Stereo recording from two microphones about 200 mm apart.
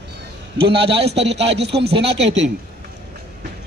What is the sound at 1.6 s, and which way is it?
Speech, 55° right (ahead or behind).